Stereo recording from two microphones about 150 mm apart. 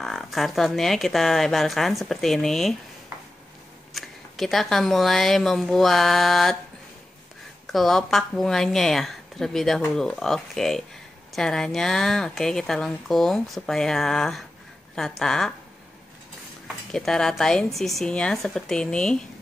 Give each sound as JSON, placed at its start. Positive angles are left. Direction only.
{"t": 0.0, "sound": "a woman's voice", "side_deg": 0}
{"t": 3.9, "sound": "a woman's voice", "side_deg": 0}
{"t": 7.6, "sound": "a woman's voice", "side_deg": 0}
{"t": 16.6, "sound": "a woman's voice", "side_deg": 5}